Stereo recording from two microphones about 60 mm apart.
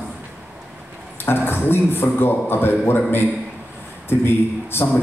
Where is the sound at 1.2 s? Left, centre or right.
Left.